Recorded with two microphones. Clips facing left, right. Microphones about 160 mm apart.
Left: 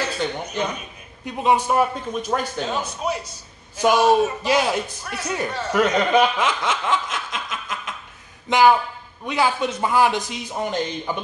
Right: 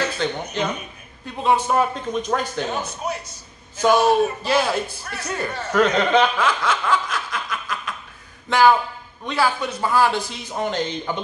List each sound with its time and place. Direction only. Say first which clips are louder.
0.2 s a man's voice: right 1 dB; 10° left (ahead or behind)
3.7 s a man's voice: even; 15° left (ahead or behind)